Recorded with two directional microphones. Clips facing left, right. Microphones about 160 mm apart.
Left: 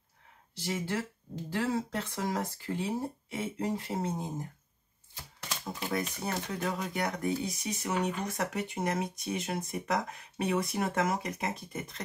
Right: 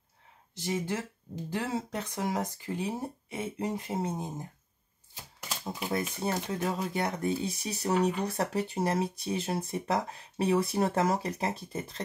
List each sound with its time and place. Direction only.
0.6 s speech: 20° right (ahead or behind)
5.1 s typewriter: 10° right (ahead or behind)
5.9 s speech: 25° right (ahead or behind)